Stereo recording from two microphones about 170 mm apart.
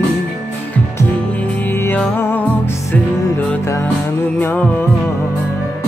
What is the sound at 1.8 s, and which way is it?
Music, 10° left (ahead or behind).